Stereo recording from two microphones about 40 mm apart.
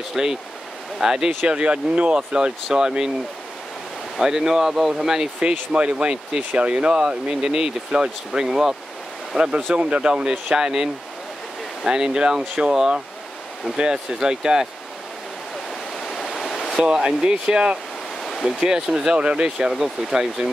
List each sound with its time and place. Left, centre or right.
0.1 s speech: centre
1.5 s speech: right
4.2 s speech: centre
5.4 s speech: right
9.7 s speech: right; by 14.7 s centre
16.0 s waterfall: centre
16.8 s speech: centre
19.1 s speech: right
19.6 s speech: centre